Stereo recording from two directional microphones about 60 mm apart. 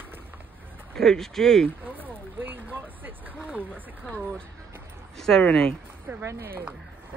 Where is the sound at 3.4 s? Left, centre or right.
Right.